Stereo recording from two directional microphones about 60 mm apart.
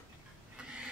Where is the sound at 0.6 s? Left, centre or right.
Centre.